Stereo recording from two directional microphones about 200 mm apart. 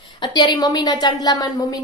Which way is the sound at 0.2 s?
20° left (ahead or behind).